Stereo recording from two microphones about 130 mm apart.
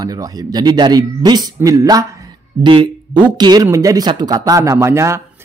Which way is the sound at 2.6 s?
40° right (ahead or behind).